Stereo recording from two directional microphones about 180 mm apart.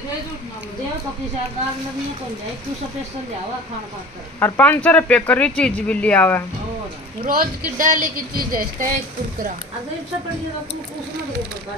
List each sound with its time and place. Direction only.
4.4 s speech: 10° left (ahead or behind)
7.2 s speech: 50° right (ahead or behind)